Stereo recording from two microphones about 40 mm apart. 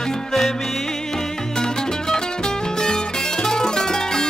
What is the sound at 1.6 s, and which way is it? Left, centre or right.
Music, centre.